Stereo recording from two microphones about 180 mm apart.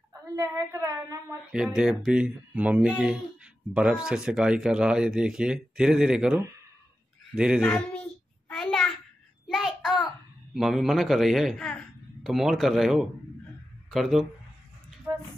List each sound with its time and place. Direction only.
0.4 s a woman's voice: 20° right (ahead or behind)
1.5 s speech: 5° right (ahead or behind)
7.6 s child singing: 5° left (ahead or behind)
10.5 s speech: centre (ahead or behind)
15.1 s a sound: 15° right (ahead or behind)